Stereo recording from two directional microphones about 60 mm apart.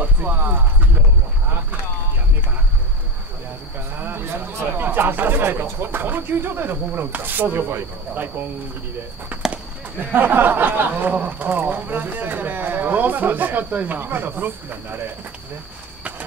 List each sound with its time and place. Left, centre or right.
0.0 s a sound: right
3.9 s speech: right
9.3 s clip-clop: right
9.9 s speech: right